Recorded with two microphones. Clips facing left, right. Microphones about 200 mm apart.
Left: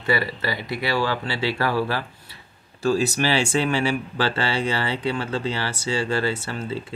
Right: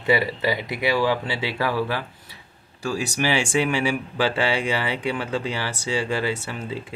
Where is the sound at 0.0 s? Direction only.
20° right (ahead or behind).